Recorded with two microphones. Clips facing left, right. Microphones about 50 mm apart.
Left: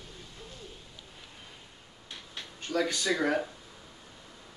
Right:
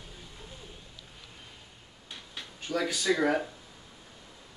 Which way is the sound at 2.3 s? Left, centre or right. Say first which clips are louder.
Left 1 dB; centre.